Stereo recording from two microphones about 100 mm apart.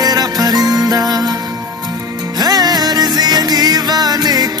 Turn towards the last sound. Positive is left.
turn(degrees=-40)  # may be behind; listen again after turning